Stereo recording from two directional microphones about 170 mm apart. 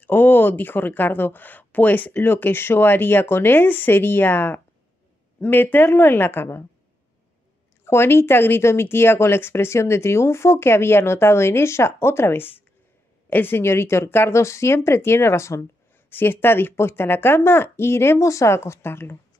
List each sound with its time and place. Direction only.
0.0 s speech: 10° left (ahead or behind)
7.8 s speech: 15° left (ahead or behind)